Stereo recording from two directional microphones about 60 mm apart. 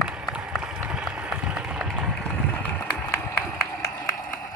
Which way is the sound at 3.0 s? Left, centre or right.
Left.